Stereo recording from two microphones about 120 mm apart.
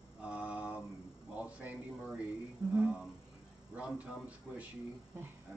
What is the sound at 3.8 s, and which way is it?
Speech, 10° right (ahead or behind).